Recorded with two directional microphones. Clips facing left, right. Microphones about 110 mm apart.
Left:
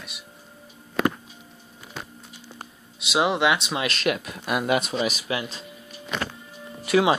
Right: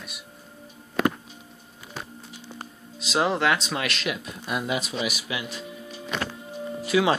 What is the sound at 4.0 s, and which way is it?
Speech, 60° left (ahead or behind).